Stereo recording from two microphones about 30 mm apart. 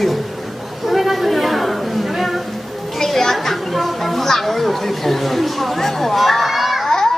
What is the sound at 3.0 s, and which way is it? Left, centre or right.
Speech, centre.